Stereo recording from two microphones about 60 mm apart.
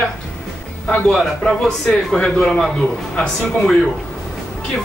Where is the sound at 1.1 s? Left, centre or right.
Centre.